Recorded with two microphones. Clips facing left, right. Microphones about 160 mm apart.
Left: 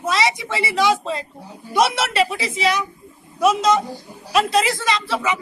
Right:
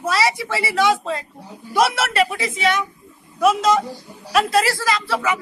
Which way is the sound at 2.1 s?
30° left (ahead or behind).